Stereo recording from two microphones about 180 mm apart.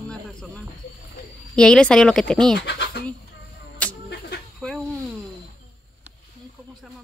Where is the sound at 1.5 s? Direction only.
5° left (ahead or behind).